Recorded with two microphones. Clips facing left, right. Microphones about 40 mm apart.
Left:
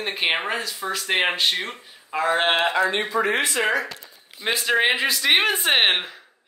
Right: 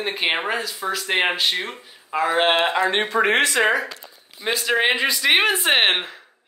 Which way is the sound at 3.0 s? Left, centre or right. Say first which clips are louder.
Right 4 dB; right.